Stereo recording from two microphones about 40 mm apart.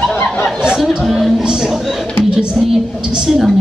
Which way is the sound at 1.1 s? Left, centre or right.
Centre.